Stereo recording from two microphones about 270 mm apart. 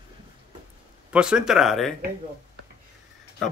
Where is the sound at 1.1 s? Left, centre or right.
Centre.